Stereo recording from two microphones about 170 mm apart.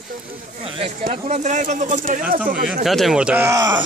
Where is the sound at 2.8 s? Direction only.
Centre (ahead or behind); by 3.8 s 20° right (ahead or behind).